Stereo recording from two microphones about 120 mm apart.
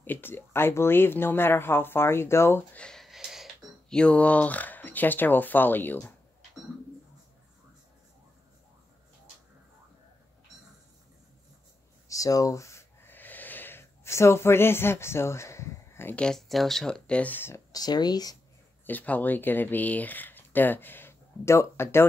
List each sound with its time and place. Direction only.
0.0 s speech: 15° left (ahead or behind)
2.8 s a sound: 5° left (ahead or behind)
3.9 s speech: 10° left (ahead or behind)
12.1 s gasp: 30° left (ahead or behind)
16.2 s speech: 5° left (ahead or behind)
17.7 s speech: 35° left (ahead or behind)
18.9 s speech: 15° left (ahead or behind)